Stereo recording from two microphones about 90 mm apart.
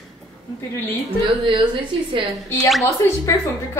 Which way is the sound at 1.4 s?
70° right (ahead or behind).